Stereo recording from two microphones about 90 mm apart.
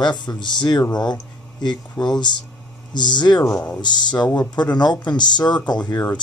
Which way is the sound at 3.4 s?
35° left (ahead or behind).